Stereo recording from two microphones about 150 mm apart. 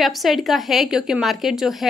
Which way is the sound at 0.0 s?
Centre (ahead or behind).